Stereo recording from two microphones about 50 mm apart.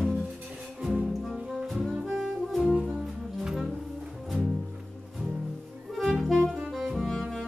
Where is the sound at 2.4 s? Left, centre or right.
Centre.